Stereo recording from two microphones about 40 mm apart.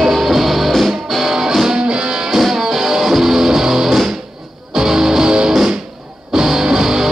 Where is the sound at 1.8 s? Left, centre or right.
Right.